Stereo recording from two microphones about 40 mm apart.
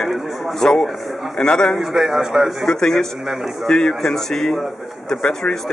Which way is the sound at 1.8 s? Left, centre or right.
Centre.